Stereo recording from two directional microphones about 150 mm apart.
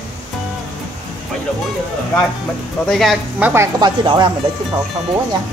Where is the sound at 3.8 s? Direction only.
30° right (ahead or behind).